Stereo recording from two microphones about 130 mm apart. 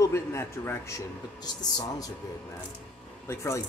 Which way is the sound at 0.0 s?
20° left (ahead or behind).